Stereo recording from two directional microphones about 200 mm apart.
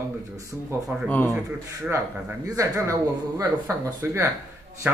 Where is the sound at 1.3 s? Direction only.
10° right (ahead or behind).